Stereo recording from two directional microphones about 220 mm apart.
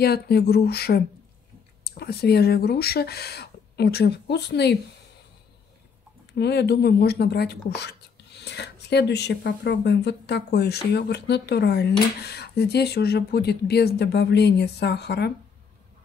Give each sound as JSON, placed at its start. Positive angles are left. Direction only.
{"t": 0.0, "sound": "speech", "side_deg": 45}
{"t": 6.3, "sound": "speech", "side_deg": 50}